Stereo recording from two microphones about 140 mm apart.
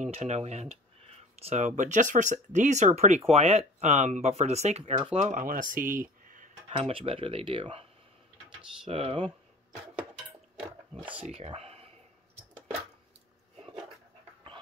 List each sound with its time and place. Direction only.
0.0 s speech: 50° right (ahead or behind)
1.8 s speech: 60° right (ahead or behind)
4.9 s speech: 35° right (ahead or behind)
5.2 s speech: 70° right (ahead or behind)
6.8 s speech: 45° right (ahead or behind)
8.8 s speech: 40° right (ahead or behind)
10.6 s speech: 10° right (ahead or behind)
11.2 s speech: 45° right (ahead or behind)